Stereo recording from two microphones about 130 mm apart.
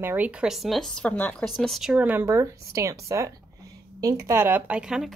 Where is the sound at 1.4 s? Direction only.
Centre (ahead or behind).